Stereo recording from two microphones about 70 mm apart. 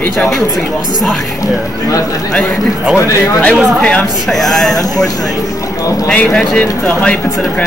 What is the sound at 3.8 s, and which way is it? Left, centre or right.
Speech, centre.